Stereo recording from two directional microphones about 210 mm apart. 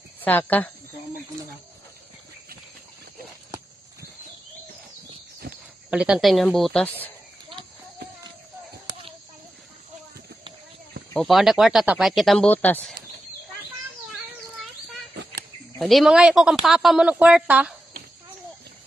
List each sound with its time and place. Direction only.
0.2 s speech: 10° left (ahead or behind)
5.4 s a sound: 45° right (ahead or behind)
5.9 s speech: 5° right (ahead or behind)
11.1 s speech: centre (ahead or behind)
14.1 s a sound: centre (ahead or behind)
15.8 s speech: centre (ahead or behind)